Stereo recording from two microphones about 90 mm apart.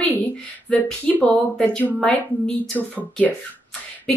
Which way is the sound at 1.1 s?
15° left (ahead or behind).